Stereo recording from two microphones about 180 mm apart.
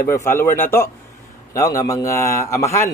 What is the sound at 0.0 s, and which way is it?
A man's voice, 15° left (ahead or behind).